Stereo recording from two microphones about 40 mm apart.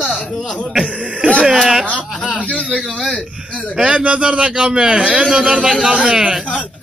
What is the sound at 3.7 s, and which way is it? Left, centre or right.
A man's voice, right.